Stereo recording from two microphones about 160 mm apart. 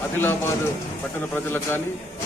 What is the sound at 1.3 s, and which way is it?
Speech, 15° left (ahead or behind).